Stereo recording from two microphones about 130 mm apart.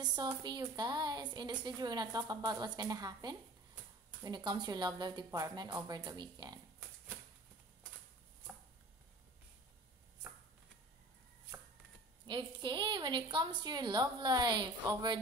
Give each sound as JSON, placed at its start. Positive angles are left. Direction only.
{"t": 0.0, "sound": "a woman's voice", "side_deg": -30}
{"t": 12.3, "sound": "a woman's voice", "side_deg": -35}